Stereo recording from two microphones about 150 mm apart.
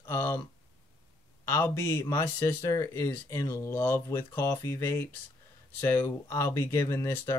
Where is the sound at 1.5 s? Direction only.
15° left (ahead or behind).